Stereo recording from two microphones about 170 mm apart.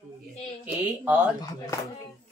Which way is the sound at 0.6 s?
10° right (ahead or behind).